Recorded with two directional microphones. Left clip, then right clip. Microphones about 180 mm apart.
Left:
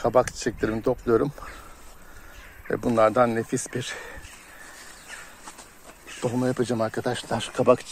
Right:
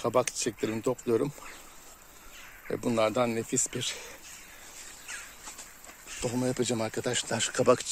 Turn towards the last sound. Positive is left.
turn(degrees=-20)  # may be behind; listen again after turning